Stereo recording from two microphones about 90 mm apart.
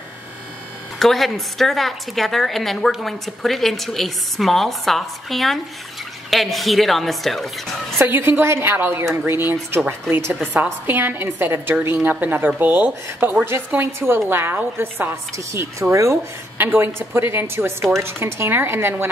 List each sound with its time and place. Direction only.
0.9 s a woman's voice: centre (ahead or behind)
8.0 s a woman's voice: 25° right (ahead or behind)
16.5 s a woman's voice: 25° right (ahead or behind)